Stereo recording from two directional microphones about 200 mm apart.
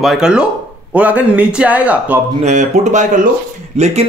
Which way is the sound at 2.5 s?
40° right (ahead or behind).